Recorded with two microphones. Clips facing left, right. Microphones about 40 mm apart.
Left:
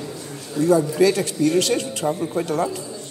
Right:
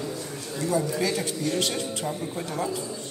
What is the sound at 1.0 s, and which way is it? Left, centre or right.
Speech, left.